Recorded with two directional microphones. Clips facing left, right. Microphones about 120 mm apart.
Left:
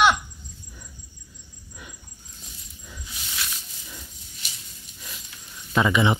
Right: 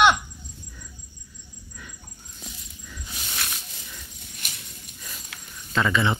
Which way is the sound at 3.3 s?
55° right (ahead or behind).